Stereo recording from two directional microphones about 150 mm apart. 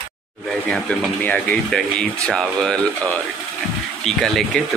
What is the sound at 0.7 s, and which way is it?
Speech, 5° left (ahead or behind).